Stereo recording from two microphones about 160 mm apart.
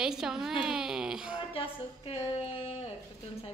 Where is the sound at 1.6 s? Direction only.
35° left (ahead or behind).